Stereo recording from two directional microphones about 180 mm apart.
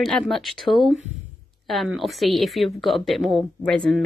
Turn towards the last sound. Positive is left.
turn(degrees=5)  # may be behind; listen again after turning